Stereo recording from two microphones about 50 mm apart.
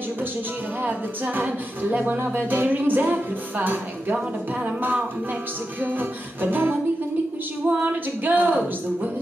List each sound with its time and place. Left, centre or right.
0.8 s music: right
5.8 s music: right